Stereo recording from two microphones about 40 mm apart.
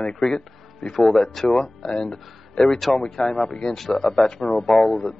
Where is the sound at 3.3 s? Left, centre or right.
Centre.